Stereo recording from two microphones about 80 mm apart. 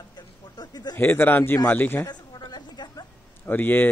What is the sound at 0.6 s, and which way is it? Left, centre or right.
Speech, left.